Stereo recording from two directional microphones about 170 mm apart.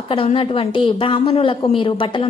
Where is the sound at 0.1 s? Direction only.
30° left (ahead or behind).